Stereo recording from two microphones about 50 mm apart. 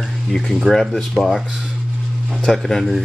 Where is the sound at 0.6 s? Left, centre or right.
Centre.